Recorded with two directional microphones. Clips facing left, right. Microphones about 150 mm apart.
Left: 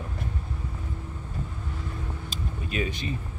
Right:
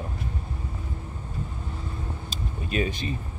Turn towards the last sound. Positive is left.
turn(degrees=-35)  # may be behind; listen again after turning